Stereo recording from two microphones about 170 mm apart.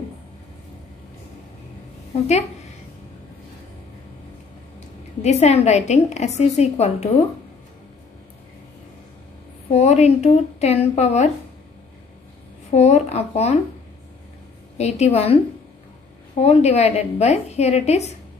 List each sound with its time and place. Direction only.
5.2 s a woman's voice: 40° left (ahead or behind)
9.8 s a woman's voice: 40° left (ahead or behind)
12.7 s a woman's voice: 40° left (ahead or behind)
14.8 s a woman's voice: 40° left (ahead or behind)